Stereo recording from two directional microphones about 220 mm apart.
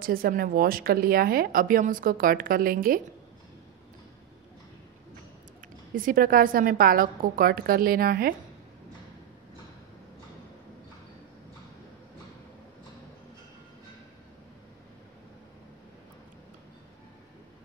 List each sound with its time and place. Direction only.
0.0 s a woman's voice: 40° right (ahead or behind)
5.9 s a woman's voice: 40° right (ahead or behind)